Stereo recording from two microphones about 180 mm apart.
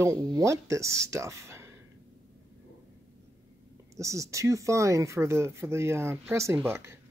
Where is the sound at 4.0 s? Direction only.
15° right (ahead or behind).